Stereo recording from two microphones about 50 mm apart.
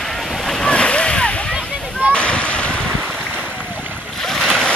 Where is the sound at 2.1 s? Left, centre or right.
Left.